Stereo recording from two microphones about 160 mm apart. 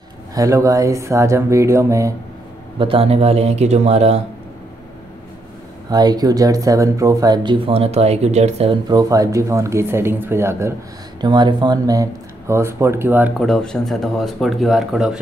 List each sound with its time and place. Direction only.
0.3 s speech: 20° right (ahead or behind)
2.8 s speech: 35° right (ahead or behind)
5.9 s speech: 25° right (ahead or behind); by 8.7 s 40° right (ahead or behind)
8.8 s speech: 25° right (ahead or behind)
11.1 s speech: 30° right (ahead or behind)
13.4 s speech: 5° left (ahead or behind)